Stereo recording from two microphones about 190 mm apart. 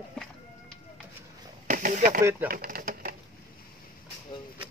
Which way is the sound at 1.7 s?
45° right (ahead or behind).